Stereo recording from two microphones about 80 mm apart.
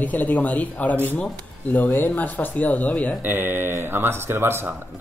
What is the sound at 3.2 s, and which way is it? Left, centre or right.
Speech, right.